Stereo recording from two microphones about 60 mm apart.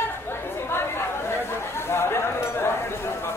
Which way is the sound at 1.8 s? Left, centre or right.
Left.